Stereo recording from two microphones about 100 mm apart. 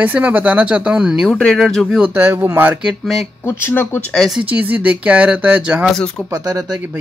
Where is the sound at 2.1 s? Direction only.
20° right (ahead or behind).